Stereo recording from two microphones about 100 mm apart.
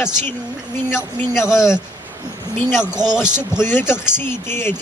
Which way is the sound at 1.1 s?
25° left (ahead or behind).